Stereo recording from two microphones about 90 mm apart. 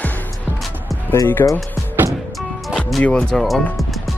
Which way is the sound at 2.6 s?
Centre (ahead or behind).